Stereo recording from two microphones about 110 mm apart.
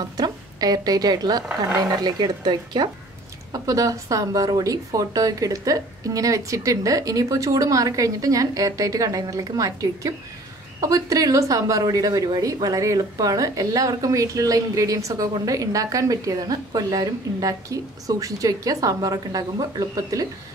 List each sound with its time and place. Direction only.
0.2 s a woman's voice: 35° right (ahead or behind)